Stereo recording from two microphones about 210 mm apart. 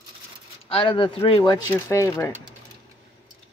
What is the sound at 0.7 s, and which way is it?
Speech, 25° left (ahead or behind).